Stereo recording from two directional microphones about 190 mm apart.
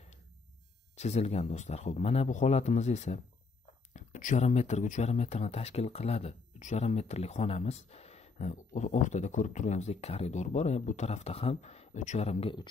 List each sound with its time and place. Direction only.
0.9 s speech: 35° left (ahead or behind)